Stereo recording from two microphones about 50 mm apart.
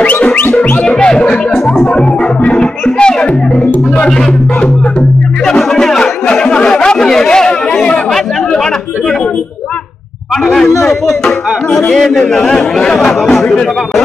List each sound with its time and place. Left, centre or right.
0.0 s music: left
5.6 s chatter: centre
11.9 s a man's voice: centre
12.5 s speech: centre